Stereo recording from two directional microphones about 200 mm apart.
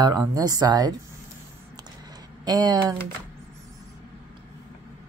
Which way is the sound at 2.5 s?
20° right (ahead or behind).